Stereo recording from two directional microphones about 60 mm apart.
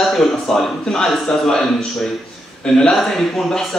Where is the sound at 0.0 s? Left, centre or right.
Centre.